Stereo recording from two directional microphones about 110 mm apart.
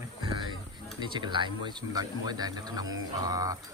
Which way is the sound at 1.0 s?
45° right (ahead or behind).